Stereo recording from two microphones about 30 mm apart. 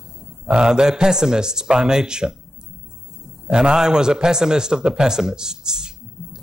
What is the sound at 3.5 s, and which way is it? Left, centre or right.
A man's voice, right.